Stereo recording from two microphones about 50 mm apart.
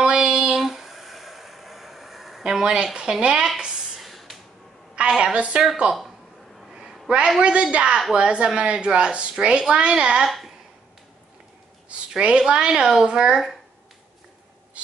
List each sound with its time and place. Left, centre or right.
0.0 s child singing: centre
0.6 s a sound: centre
2.6 s speech: centre
3.4 s a sound: centre
4.0 s spray: centre
5.2 s a woman's voice: right
6.7 s a sound: centre
7.7 s a woman's voice: centre
10.2 s speech: centre
12.2 s speech: centre